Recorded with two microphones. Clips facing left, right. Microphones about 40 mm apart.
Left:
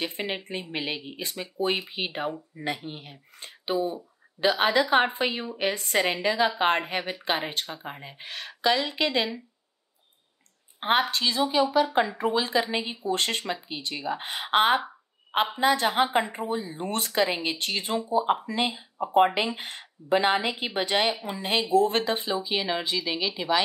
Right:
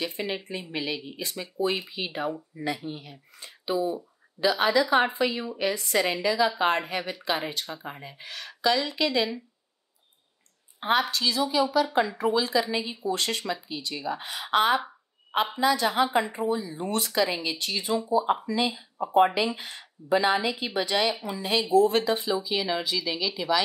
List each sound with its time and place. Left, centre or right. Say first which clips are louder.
0.0 s speech: even; left
1.3 s speech: even; centre
1.9 s speech: even; left
7.7 s speech: even; left
8.0 s speech: left 1 dB; left
10.8 s speech: left 1 dB; left
11.7 s speech: left 1 dB; left
12.4 s speech: left 1 dB; left
18.2 s speech: left 1 dB; left
18.5 s speech: right 1 dB; left